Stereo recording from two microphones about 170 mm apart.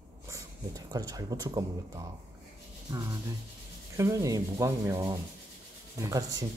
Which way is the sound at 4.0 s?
20° right (ahead or behind).